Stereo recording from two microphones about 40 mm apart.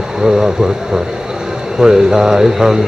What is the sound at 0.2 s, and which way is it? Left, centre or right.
Speech, centre.